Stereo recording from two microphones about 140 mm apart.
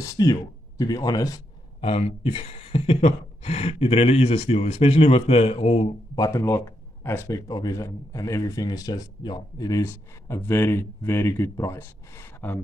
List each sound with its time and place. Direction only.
0.0 s speech: 25° left (ahead or behind)
1.8 s speech: 45° left (ahead or behind)
6.1 s speech: 25° left (ahead or behind)